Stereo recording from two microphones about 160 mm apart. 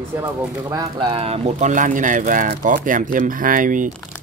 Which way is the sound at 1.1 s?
40° right (ahead or behind).